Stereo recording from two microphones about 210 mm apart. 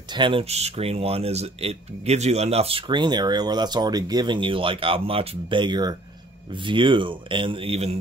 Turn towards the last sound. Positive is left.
turn(degrees=-30)  # may be behind; listen again after turning